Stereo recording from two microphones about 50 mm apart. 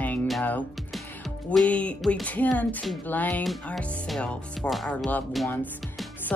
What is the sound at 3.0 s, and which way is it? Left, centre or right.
Speech, left.